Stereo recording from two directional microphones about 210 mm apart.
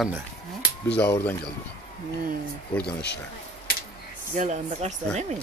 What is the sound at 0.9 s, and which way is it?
Speech, 10° left (ahead or behind).